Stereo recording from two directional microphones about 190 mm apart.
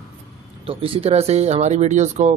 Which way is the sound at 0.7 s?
30° right (ahead or behind).